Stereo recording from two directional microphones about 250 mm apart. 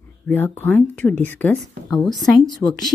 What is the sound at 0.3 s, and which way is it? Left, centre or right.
Speech, centre.